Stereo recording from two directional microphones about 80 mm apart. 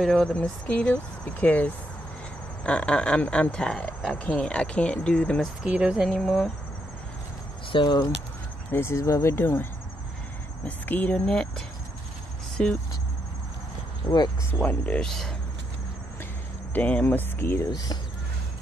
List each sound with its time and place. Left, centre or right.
0.0 s speech: centre
5.6 s speech: centre
6.0 s speech: centre
7.7 s speech: left
8.7 s speech: left
11.2 s speech: centre
14.0 s speech: left
14.5 s speech: centre
15.0 s speech: centre
16.7 s speech: left
17.6 s speech: left